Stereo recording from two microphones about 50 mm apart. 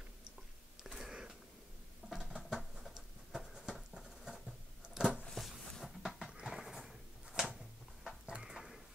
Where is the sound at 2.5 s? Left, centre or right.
Centre.